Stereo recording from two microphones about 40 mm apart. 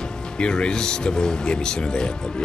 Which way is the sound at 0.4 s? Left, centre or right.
Left.